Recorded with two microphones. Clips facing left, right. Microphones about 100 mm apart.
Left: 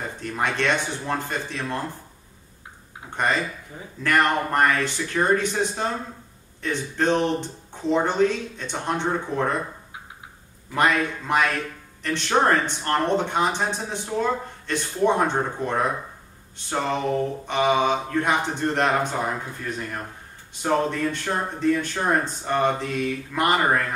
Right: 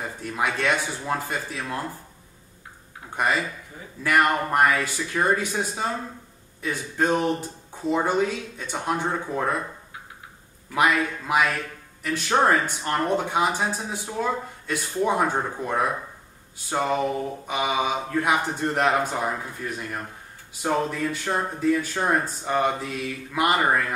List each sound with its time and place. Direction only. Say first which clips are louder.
0.0 s speech: even; 5° right (ahead or behind)
3.2 s speech: even; 5° right (ahead or behind)
10.7 s speech: even; 5° right (ahead or behind)
20.6 s speech: left 2 dB; 5° right (ahead or behind)